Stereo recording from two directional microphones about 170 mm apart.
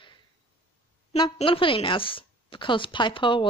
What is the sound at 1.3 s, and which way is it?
A woman's voice, 30° left (ahead or behind).